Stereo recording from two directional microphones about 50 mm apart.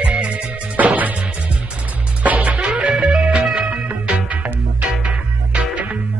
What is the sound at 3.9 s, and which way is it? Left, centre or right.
Music, right.